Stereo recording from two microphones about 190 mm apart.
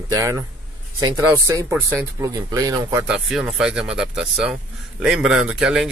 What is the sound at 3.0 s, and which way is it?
Speech, 5° right (ahead or behind).